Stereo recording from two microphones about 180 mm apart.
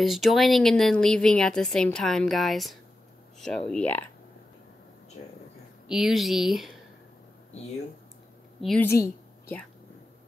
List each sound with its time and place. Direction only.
0.0 s a woman's voice: centre (ahead or behind)
5.9 s a woman's voice: centre (ahead or behind)
8.5 s a woman's voice: centre (ahead or behind)
8.8 s a sound: 15° left (ahead or behind)